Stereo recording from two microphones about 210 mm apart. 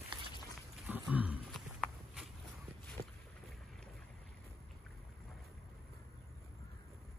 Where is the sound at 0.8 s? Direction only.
5° right (ahead or behind).